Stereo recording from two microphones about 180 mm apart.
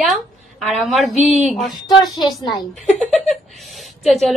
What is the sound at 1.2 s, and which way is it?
Speech, 40° right (ahead or behind).